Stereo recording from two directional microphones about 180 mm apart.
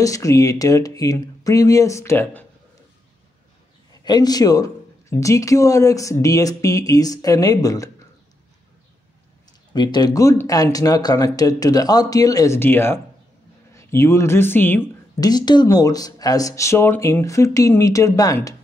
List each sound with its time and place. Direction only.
0.0 s speech: 20° left (ahead or behind)
3.9 s a man's voice: 20° left (ahead or behind)
9.5 s speech: 25° left (ahead or behind)
15.1 s speech: 20° left (ahead or behind)